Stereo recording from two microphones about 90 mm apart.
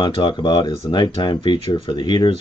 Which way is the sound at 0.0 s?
60° left (ahead or behind).